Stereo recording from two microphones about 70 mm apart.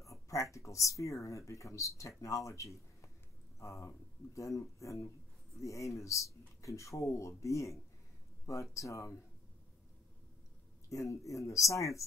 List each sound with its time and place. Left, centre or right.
0.0 s speech: left
10.9 s speech: left